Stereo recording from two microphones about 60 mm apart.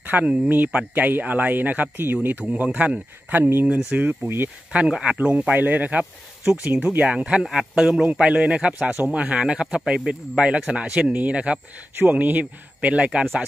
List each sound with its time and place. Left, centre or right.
0.0 s a sound: right
0.3 s speech: right
4.7 s speech: centre